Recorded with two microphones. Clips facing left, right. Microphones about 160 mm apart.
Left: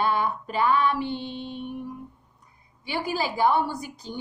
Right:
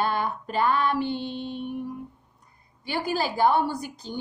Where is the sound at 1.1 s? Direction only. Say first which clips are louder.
Right 2 dB; centre (ahead or behind).